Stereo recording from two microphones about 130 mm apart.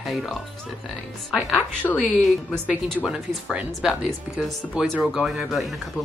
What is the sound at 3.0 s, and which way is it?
Speech, 5° right (ahead or behind).